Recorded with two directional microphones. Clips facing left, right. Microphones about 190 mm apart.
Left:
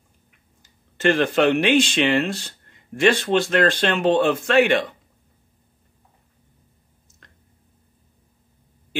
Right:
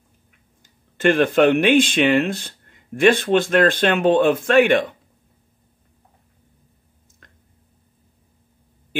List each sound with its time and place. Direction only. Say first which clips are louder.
0.6 s speech: right 3 dB; 50° right (ahead or behind)